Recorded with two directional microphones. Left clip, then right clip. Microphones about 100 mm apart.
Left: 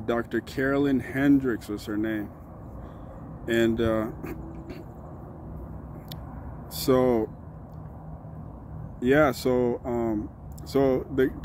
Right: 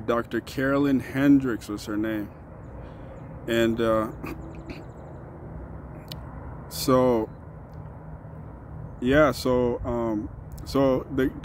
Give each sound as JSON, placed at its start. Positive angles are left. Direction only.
{"t": 0.0, "sound": "speech", "side_deg": -25}
{"t": 3.4, "sound": "speech", "side_deg": -30}
{"t": 6.7, "sound": "speech", "side_deg": -25}
{"t": 9.0, "sound": "speech", "side_deg": -20}